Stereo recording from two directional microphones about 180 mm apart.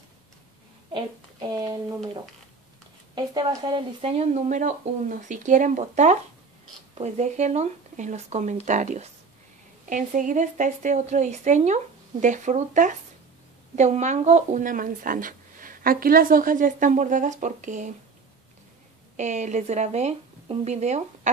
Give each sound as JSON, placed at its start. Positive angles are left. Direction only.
{"t": 0.9, "sound": "speech", "side_deg": -25}
{"t": 3.2, "sound": "speech", "side_deg": -25}
{"t": 19.1, "sound": "speech", "side_deg": -40}